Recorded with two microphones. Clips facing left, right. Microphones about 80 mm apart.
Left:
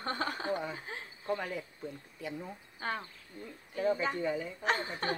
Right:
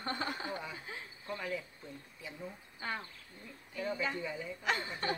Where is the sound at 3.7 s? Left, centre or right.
Left.